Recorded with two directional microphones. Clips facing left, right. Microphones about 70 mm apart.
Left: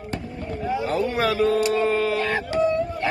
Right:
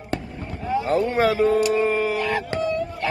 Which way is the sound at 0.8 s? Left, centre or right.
Right.